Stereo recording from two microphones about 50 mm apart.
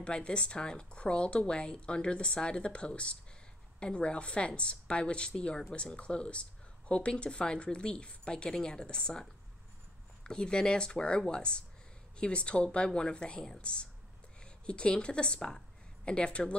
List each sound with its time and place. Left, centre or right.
0.0 s a woman's voice: left